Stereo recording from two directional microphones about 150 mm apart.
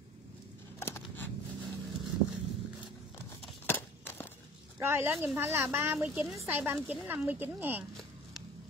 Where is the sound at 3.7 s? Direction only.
15° left (ahead or behind).